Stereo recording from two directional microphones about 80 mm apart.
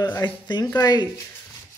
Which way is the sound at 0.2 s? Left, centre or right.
Left.